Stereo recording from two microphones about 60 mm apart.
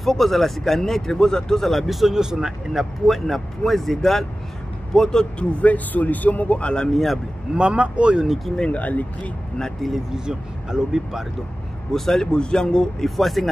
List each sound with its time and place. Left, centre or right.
0.0 s speech: centre
5.6 s speech: left
7.5 s speech: centre
8.5 s speech: left
10.1 s speech: centre
11.9 s speech: centre
13.1 s speech: centre